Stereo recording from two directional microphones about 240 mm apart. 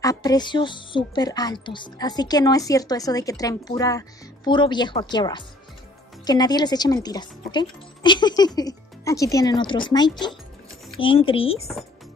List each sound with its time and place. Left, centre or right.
0.0 s a woman's voice: centre